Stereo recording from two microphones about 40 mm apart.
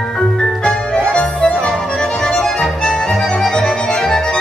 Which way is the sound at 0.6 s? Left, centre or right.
Left.